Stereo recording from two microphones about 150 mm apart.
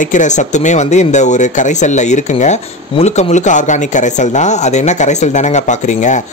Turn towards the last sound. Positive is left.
turn(degrees=55)  # may be behind; listen again after turning